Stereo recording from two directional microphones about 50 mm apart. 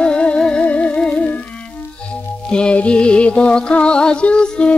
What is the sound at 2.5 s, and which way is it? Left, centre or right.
Music, left.